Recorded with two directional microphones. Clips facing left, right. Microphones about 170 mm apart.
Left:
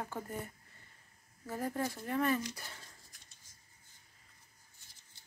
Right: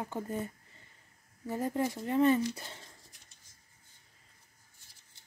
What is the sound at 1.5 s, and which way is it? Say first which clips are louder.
Speech: right 5 dB; 20° right (ahead or behind).